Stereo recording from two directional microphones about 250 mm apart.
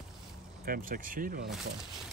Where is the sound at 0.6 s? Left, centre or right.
Right.